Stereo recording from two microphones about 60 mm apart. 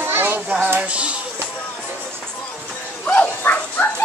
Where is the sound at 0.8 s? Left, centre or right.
Centre.